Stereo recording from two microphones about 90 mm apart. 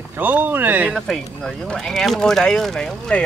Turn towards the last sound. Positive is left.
turn(degrees=10)  # may be behind; listen again after turning